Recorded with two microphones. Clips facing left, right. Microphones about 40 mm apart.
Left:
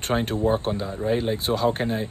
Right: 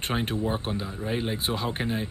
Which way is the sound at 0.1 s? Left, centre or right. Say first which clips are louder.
Left 7 dB; centre.